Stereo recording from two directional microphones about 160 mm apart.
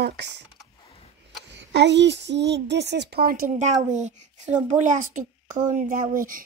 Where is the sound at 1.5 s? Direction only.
90° right.